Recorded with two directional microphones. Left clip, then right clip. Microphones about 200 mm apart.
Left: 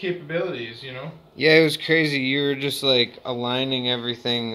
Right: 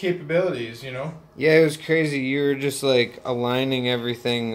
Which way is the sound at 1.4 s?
30° left (ahead or behind).